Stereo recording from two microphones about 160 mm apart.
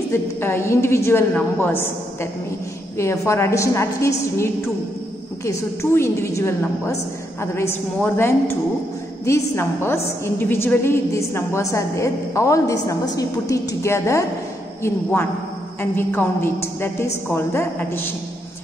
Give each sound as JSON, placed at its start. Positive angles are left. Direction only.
{"t": 0.1, "sound": "a woman's voice", "side_deg": 15}
{"t": 3.0, "sound": "a woman's voice", "side_deg": 15}
{"t": 5.4, "sound": "a woman's voice", "side_deg": 15}